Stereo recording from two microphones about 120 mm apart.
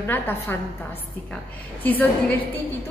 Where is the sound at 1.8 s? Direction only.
15° left (ahead or behind).